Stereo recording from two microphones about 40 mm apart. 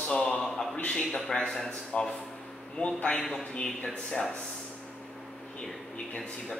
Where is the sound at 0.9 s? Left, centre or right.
Centre.